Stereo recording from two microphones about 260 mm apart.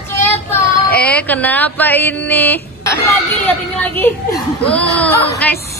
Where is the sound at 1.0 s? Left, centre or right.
Centre.